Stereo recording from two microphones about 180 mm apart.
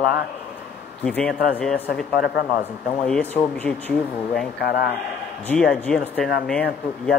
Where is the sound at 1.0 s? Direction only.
5° left (ahead or behind).